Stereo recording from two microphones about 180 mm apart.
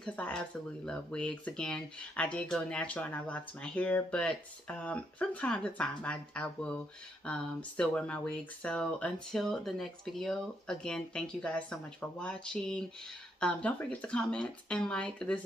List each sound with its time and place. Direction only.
0.0 s speech: 5° left (ahead or behind)